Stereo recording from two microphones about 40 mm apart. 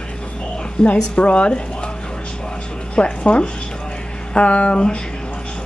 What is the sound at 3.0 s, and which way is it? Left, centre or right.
A woman's voice, left.